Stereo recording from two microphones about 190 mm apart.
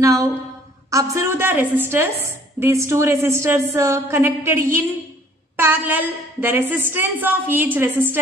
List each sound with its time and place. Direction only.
0.0 s a woman's voice: 20° right (ahead or behind)